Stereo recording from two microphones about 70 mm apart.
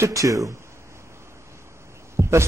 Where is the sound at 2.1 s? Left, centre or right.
Right.